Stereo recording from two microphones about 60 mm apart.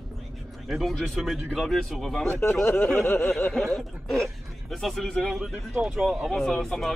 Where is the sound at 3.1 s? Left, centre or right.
Centre.